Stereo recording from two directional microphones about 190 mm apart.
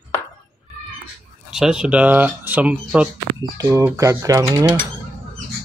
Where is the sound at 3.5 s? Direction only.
20° right (ahead or behind).